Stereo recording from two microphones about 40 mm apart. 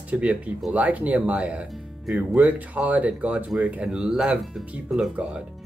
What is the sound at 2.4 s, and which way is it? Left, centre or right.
Speech, right.